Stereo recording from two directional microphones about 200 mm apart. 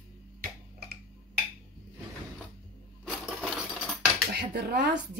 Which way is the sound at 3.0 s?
Centre (ahead or behind).